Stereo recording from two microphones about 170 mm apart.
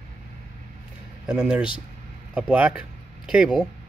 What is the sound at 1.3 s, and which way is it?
Speech, 5° right (ahead or behind).